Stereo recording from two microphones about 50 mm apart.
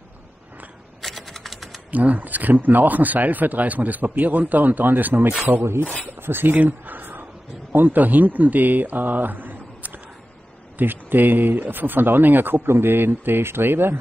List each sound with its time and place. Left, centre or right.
1.0 s typing: centre
1.9 s speech: right
5.6 s speech: right
6.1 s speech: right
6.5 s speech: right